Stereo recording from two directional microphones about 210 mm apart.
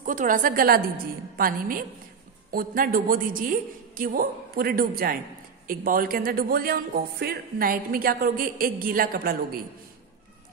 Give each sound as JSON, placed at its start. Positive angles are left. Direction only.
{"t": 0.0, "sound": "speech", "side_deg": -40}